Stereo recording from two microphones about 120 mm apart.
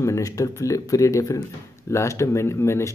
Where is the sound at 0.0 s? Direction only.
25° left (ahead or behind).